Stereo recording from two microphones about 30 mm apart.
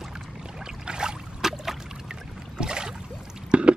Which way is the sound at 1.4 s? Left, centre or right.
Centre.